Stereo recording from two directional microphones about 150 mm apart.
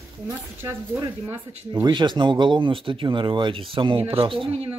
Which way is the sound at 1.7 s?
30° right (ahead or behind).